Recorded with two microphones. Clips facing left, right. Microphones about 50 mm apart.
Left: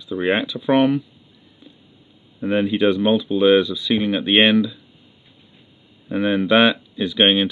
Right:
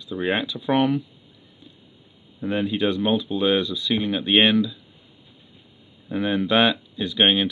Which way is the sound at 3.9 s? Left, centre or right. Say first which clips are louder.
Left 3 dB; left.